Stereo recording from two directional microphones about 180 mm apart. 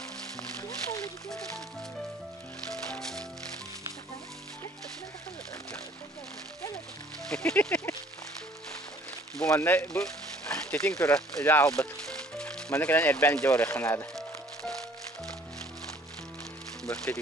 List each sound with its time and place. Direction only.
2.9 s music: 5° left (ahead or behind)
7.2 s speech: 5° left (ahead or behind)
9.4 s speech: 10° left (ahead or behind)
11.0 s music: 10° left (ahead or behind)
12.7 s speech: 10° left (ahead or behind)
16.8 s speech: 5° left (ahead or behind)